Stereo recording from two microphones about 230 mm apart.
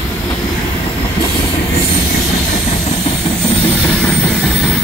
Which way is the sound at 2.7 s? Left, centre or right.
Left.